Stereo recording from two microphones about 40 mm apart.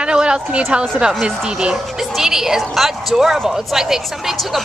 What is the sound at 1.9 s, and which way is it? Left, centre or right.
Speech, centre.